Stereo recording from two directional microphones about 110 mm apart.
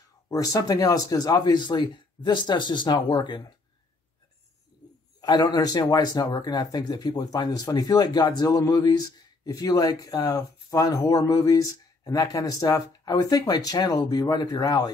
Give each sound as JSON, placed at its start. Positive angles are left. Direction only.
{"t": 0.3, "sound": "speech", "side_deg": 35}
{"t": 5.2, "sound": "speech", "side_deg": 40}